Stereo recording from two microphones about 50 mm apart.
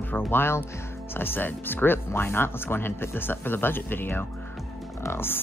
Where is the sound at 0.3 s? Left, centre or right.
Left.